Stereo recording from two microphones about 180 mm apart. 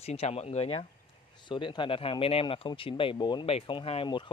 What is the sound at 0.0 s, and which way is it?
Speech, 35° left (ahead or behind).